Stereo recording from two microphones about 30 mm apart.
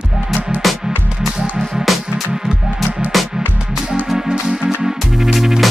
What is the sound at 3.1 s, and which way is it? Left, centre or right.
Music, centre.